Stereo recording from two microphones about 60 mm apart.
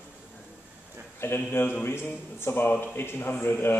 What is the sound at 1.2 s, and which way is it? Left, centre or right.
A man's voice, left.